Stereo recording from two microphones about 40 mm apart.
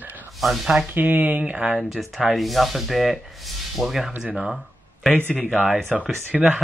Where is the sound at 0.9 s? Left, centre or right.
Right.